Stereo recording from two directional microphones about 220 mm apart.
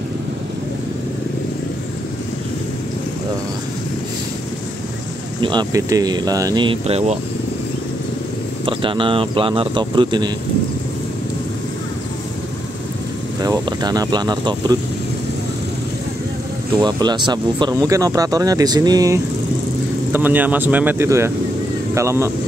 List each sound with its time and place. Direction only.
5.4 s speech: 20° right (ahead or behind)
8.6 s speech: 25° right (ahead or behind)
13.4 s speech: 15° right (ahead or behind)
16.8 s speech: 20° right (ahead or behind)